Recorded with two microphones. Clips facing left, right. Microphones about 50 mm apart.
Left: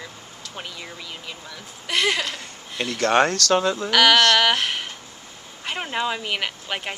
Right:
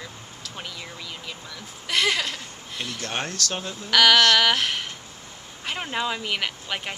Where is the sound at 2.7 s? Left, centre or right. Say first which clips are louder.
Left 12 dB; left.